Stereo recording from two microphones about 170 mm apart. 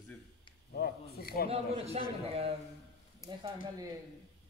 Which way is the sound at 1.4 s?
35° right (ahead or behind).